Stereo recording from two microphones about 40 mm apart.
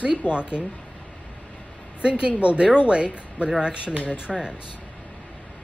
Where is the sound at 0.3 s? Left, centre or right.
Right.